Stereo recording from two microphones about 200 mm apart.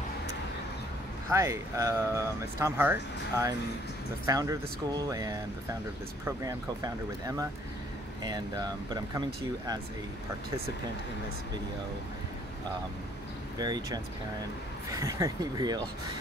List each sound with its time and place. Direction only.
1.3 s speech: 15° right (ahead or behind)
13.6 s speech: 20° right (ahead or behind)